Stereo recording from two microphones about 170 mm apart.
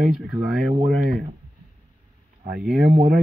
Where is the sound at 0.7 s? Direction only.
50° right (ahead or behind).